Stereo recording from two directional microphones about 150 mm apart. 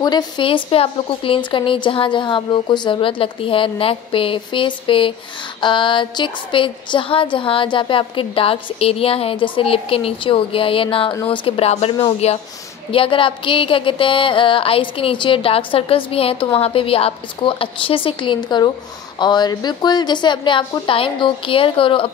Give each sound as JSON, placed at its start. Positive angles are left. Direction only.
{"t": 0.0, "sound": "music", "side_deg": 30}